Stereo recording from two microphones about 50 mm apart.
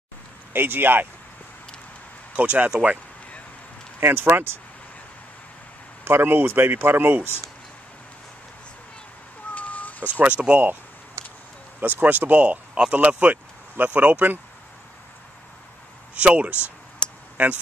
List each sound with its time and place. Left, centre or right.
0.5 s speech: right
2.3 s speech: right
2.7 s speech: centre
4.0 s speech: right
6.0 s speech: right
9.5 s a sound: left
10.1 s speech: right
11.2 s a sound: right
12.0 s speech: right
16.2 s speech: right